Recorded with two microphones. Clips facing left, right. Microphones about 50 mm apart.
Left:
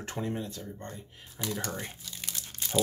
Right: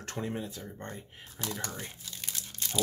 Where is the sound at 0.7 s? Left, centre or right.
Right.